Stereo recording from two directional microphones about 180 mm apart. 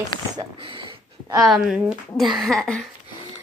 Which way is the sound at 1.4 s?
Centre (ahead or behind).